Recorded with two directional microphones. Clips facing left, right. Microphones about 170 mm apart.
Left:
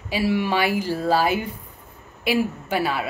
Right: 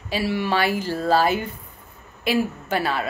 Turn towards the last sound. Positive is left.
turn(degrees=10)  # may be behind; listen again after turning